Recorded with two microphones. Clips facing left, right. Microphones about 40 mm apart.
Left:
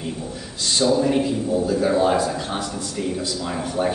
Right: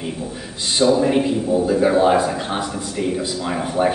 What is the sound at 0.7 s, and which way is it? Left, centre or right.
A man's voice, centre.